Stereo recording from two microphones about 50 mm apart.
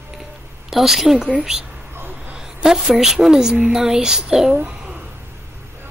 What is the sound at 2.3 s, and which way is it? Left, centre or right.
A woman's voice, centre.